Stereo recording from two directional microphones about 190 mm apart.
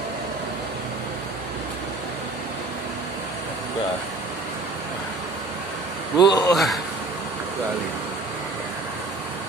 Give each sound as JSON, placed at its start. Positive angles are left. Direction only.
{"t": 6.1, "sound": "a man's voice", "side_deg": 20}
{"t": 6.5, "sound": "a man's voice", "side_deg": 0}